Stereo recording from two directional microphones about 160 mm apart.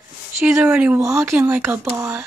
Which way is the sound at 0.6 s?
5° right (ahead or behind).